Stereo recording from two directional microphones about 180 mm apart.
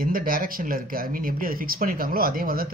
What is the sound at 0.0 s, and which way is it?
Speech, 55° right (ahead or behind).